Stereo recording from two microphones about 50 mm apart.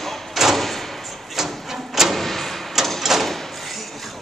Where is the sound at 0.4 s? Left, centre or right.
Centre.